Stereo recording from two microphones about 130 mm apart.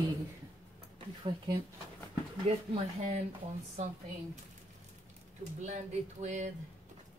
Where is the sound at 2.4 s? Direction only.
50° right (ahead or behind).